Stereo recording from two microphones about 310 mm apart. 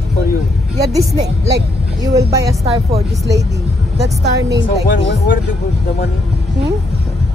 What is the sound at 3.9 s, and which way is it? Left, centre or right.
Speech, right.